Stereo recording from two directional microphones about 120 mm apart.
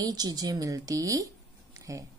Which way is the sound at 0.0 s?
35° right (ahead or behind).